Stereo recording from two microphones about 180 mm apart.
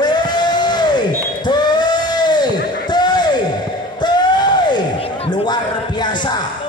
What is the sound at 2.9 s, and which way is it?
Music, 25° left (ahead or behind).